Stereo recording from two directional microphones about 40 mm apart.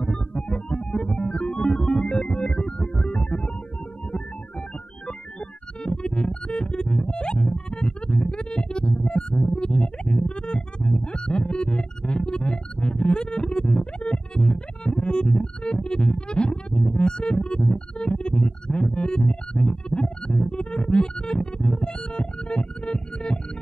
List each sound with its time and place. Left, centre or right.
0.0 s music: left
5.9 s music: left